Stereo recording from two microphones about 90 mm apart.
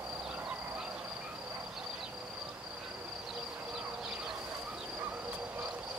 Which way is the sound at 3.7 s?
10° right (ahead or behind).